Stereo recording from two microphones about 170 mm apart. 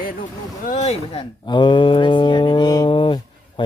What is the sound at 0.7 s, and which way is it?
Speech, 40° left (ahead or behind).